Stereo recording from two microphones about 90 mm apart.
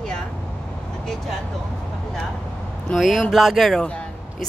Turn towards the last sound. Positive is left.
turn(degrees=10)  # may be behind; listen again after turning